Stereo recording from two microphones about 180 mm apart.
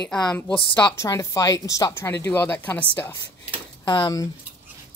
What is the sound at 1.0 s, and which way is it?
Speech, 15° left (ahead or behind).